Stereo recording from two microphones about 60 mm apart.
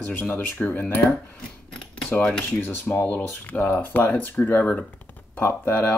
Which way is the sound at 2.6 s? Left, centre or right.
Left.